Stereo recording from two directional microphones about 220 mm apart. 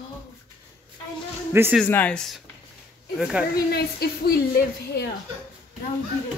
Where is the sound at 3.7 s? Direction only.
45° left (ahead or behind).